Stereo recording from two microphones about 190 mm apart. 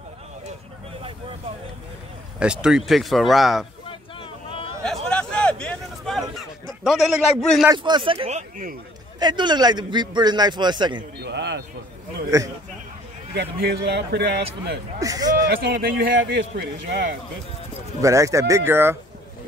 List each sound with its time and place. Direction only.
2.3 s speech: 5° right (ahead or behind)
3.8 s vehicle: 25° left (ahead or behind)
5.0 s a sound: 5° left (ahead or behind)
7.7 s a man's voice: 25° right (ahead or behind); by 8.7 s 40° right (ahead or behind)
9.2 s a man's voice: 25° right (ahead or behind)
11.2 s a sound: 65° right (ahead or behind)
13.3 s speech: 60° right (ahead or behind)
15.0 s a man's voice: 20° right (ahead or behind)
15.4 s speech: 55° right (ahead or behind)
16.2 s speech: 65° right (ahead or behind)
18.0 s speech: 15° right (ahead or behind)